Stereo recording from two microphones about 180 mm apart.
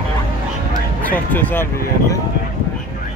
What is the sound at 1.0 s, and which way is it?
Speech, 10° left (ahead or behind).